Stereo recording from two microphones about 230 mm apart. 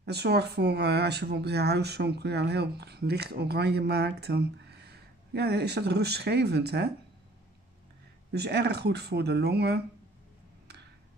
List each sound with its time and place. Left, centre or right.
0.0 s speech: right
8.3 s speech: right